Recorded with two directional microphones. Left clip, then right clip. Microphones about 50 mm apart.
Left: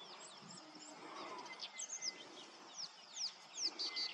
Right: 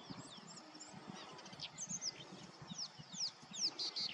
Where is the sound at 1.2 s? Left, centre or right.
Centre.